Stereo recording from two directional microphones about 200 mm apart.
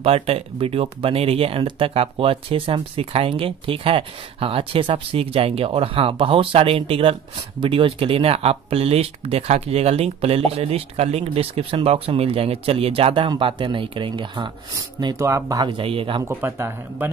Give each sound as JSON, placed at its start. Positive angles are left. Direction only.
{"t": 0.0, "sound": "speech", "side_deg": -30}
{"t": 16.3, "sound": "speech", "side_deg": -10}